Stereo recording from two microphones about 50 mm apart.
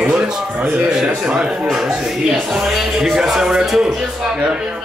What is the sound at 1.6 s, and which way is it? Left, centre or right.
Speech, centre.